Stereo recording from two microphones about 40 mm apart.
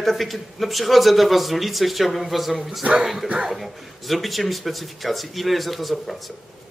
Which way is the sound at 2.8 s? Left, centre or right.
Right.